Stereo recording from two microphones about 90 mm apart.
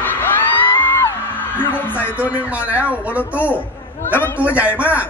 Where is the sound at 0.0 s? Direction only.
20° left (ahead or behind).